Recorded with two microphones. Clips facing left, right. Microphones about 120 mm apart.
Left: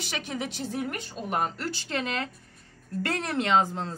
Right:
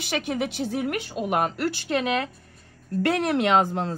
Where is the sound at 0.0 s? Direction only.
55° right (ahead or behind).